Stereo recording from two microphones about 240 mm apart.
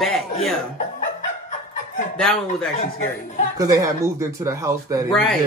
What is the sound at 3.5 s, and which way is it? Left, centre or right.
Speech, centre.